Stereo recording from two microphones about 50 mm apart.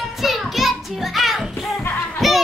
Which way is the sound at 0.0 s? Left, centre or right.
Centre.